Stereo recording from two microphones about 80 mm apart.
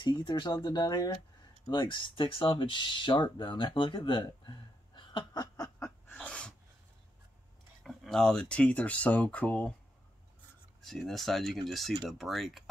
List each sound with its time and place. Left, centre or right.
0.7 s speech: left
1.7 s speech: left
5.6 s snicker: left
6.2 s sneeze: centre
7.8 s speech: centre
10.8 s speech: centre